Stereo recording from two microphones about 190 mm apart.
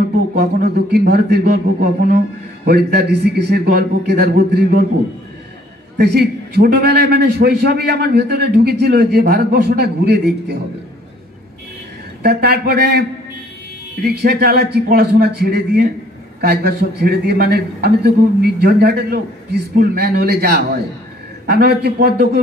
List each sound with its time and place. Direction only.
0.4 s a man's voice: 55° right (ahead or behind)
5.9 s a man's voice: 55° right (ahead or behind)
12.2 s a man's voice: 55° right (ahead or behind)